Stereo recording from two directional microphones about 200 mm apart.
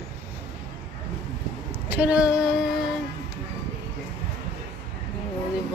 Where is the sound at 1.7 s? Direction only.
10° right (ahead or behind).